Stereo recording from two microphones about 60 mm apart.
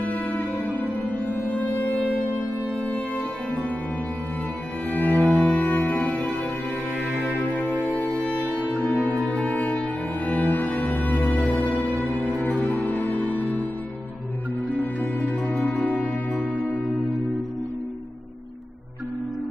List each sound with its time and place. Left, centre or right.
0.0 s music: left
4.8 s music: left
7.5 s music: left
14.7 s music: left